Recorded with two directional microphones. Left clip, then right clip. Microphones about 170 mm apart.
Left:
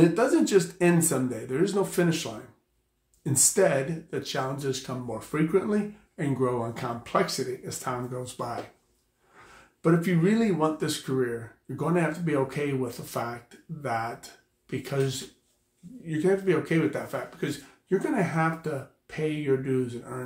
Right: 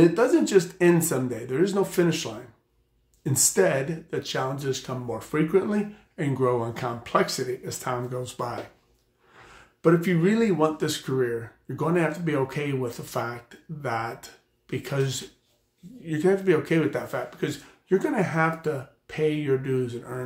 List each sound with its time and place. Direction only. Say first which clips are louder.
0.0 s speech: right 2 dB; 15° right (ahead or behind)
3.3 s speech: right 1 dB; 15° right (ahead or behind)
9.8 s speech: right 3 dB; 15° right (ahead or behind)